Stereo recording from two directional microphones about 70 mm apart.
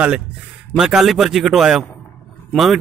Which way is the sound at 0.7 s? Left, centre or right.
Centre.